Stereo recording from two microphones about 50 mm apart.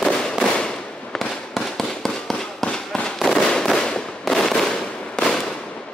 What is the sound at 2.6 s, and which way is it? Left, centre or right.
Fireworks, centre.